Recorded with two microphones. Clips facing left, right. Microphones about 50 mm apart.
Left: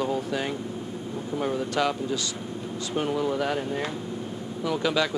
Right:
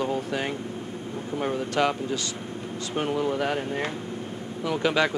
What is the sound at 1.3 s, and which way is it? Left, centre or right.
Speech, right.